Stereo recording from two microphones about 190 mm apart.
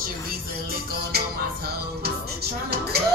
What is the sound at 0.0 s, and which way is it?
Music, 50° right (ahead or behind).